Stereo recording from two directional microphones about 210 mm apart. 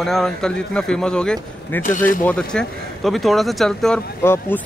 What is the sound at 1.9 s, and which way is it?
Speech, 40° left (ahead or behind).